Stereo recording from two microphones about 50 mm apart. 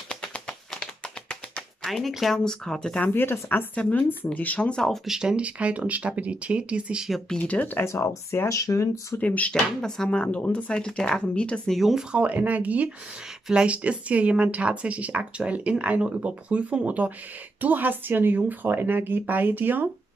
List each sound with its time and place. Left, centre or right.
0.1 s a sound: left
2.0 s speech: centre
3.1 s speech: left
3.7 s speech: left
4.6 s speech: centre
5.0 s speech: centre
5.3 s speech: right
7.3 s speech: left
7.8 s speech: left
9.2 s speech: left
9.5 s speech: centre
12.1 s speech: right